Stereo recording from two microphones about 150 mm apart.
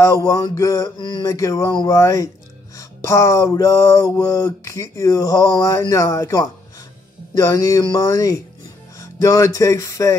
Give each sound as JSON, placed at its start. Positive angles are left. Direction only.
{"t": 0.0, "sound": "mantra", "side_deg": 20}
{"t": 8.9, "sound": "music", "side_deg": 20}